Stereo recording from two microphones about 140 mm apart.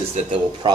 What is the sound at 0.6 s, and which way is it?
Speech, 30° right (ahead or behind).